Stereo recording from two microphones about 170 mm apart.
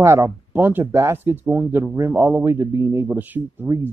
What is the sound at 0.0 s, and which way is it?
Speech, 15° right (ahead or behind).